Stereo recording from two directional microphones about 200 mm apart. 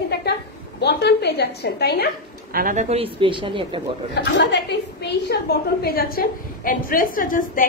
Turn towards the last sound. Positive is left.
turn(degrees=45)  # may be behind; listen again after turning